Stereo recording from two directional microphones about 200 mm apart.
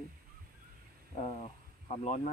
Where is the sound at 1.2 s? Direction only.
35° left (ahead or behind).